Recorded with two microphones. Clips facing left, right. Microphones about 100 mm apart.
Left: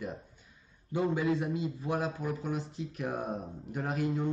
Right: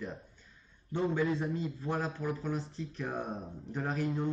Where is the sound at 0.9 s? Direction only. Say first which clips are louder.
Left 1 dB; 5° left (ahead or behind).